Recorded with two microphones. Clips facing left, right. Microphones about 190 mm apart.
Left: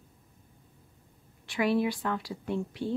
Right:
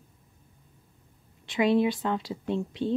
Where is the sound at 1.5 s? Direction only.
20° right (ahead or behind).